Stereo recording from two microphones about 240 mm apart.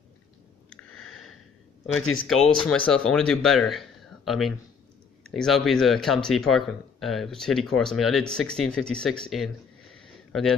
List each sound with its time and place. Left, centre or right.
0.9 s sniff: centre
1.9 s speech: left
2.4 s speech: centre